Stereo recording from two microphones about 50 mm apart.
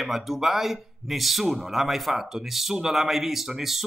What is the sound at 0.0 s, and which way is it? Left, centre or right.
Speech, centre.